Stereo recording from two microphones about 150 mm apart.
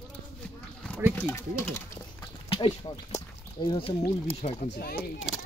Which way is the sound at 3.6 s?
30° left (ahead or behind).